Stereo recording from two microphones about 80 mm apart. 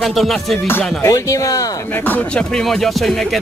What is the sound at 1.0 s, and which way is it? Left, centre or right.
Speech, left.